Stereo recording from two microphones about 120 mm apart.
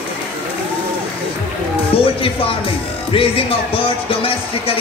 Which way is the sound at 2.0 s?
50° left (ahead or behind).